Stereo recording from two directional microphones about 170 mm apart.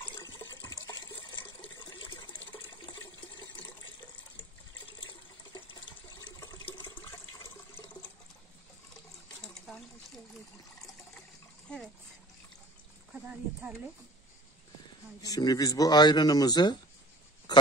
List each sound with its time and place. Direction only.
0.2 s water: 15° left (ahead or behind)
1.9 s water: 25° left (ahead or behind)
5.0 s water: 30° left (ahead or behind)
9.4 s water: 5° left (ahead or behind)
13.1 s speech: 10° right (ahead or behind)
15.2 s a man's voice: 20° left (ahead or behind)